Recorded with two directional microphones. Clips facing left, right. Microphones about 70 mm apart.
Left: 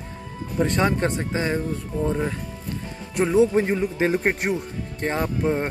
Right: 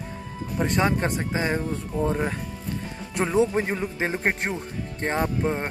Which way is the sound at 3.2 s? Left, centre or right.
Right.